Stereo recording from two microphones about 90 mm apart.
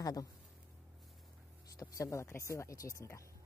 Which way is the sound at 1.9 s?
35° left (ahead or behind).